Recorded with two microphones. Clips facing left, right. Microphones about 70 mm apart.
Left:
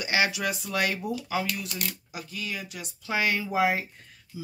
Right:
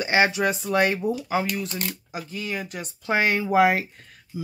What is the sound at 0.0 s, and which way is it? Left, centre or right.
Speech, right.